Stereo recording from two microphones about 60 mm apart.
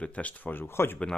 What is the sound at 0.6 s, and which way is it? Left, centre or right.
Speech, left.